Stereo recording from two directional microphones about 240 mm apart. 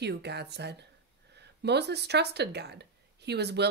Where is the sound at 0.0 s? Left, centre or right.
Right.